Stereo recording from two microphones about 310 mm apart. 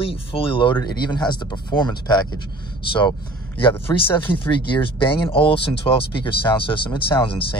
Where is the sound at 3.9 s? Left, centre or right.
Centre.